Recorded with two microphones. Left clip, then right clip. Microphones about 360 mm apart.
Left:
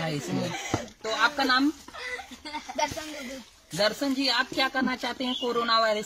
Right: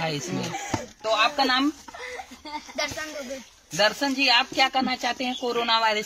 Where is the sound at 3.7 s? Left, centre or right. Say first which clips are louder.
Right 3 dB; centre.